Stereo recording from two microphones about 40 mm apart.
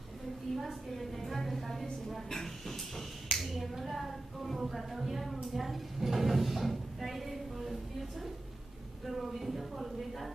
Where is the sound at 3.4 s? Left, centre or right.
Centre.